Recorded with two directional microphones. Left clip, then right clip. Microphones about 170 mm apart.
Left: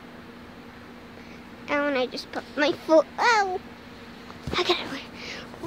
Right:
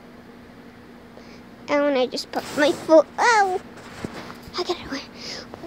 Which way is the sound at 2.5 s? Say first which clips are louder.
Right 4 dB; centre (ahead or behind).